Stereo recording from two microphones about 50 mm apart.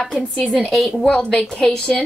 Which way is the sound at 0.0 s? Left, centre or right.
Centre.